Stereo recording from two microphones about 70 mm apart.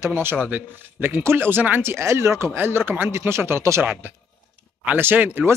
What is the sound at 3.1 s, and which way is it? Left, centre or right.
Speech, right.